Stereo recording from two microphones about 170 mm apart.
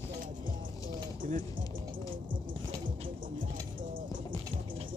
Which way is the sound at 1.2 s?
50° right (ahead or behind).